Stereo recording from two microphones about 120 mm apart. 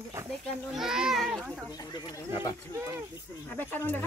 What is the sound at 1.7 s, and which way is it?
Speech, 35° left (ahead or behind).